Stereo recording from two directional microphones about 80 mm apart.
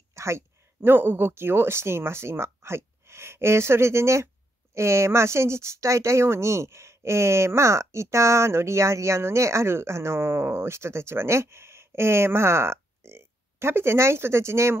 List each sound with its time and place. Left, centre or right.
0.1 s speech: right